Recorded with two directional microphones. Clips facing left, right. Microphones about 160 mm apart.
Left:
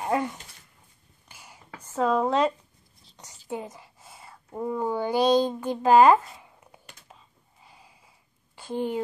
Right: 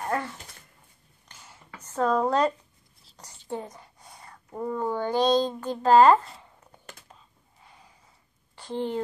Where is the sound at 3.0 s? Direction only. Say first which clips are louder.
Even; centre (ahead or behind).